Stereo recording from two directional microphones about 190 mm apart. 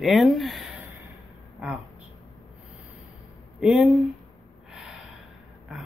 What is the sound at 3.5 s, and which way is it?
Speech, 5° right (ahead or behind).